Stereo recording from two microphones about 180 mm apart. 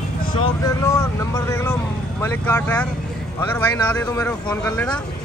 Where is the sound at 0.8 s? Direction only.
15° left (ahead or behind).